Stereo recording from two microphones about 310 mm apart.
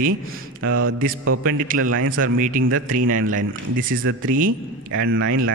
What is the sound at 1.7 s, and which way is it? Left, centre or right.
Speech, right.